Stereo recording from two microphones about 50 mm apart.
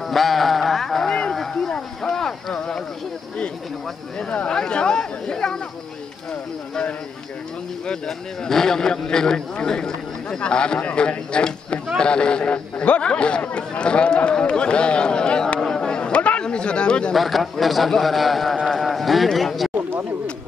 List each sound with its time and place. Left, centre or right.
0.0 s a sound: centre
4.5 s chatter: centre
8.5 s a man's voice: centre
15.7 s chatter: centre
17.1 s a man's voice: centre
19.7 s a sound: right